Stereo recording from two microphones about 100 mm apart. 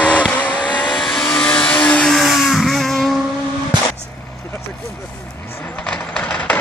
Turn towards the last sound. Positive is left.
turn(degrees=15)  # may be behind; listen again after turning